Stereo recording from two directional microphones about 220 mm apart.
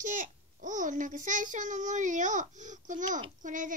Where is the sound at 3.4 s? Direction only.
35° right (ahead or behind).